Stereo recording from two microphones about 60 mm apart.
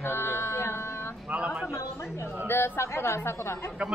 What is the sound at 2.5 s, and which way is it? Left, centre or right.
Speech, left.